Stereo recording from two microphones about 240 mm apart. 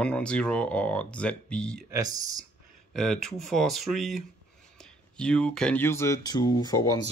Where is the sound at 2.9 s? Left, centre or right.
Centre.